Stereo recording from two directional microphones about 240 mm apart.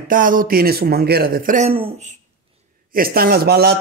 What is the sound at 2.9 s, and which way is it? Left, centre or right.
Speech, right.